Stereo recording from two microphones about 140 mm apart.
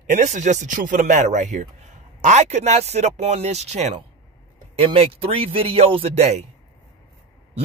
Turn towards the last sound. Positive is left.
turn(degrees=-50)  # may be behind; listen again after turning